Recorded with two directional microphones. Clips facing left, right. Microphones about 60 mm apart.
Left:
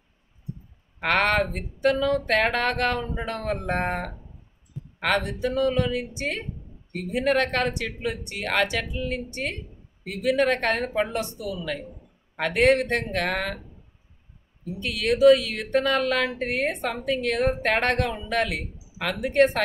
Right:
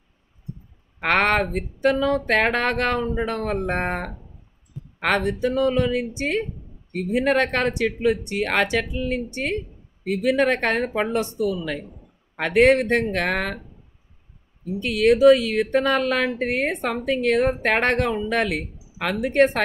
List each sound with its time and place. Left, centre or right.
1.0 s speech: right
14.8 s speech: right